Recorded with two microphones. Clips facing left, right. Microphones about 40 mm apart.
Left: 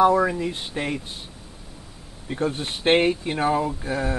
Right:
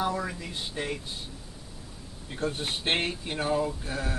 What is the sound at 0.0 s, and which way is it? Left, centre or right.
Speech, left.